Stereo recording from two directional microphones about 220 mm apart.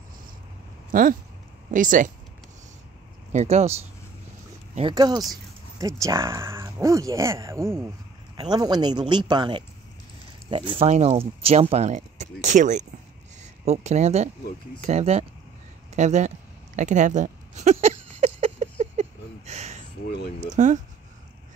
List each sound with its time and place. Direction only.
0.9 s speech: 40° right (ahead or behind)
3.3 s speech: 30° right (ahead or behind)
4.7 s speech: 20° right (ahead or behind)
15.9 s a sound: 30° right (ahead or behind)
20.3 s speech: 35° right (ahead or behind)